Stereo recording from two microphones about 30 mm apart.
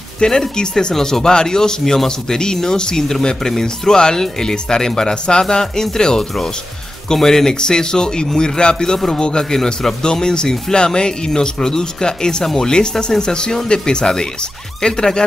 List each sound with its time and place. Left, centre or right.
0.2 s speech: left